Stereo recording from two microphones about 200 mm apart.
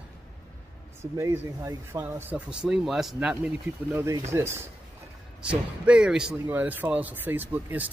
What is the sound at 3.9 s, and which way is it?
Speech, 15° right (ahead or behind).